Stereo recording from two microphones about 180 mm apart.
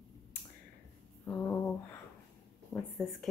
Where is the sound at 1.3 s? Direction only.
15° left (ahead or behind).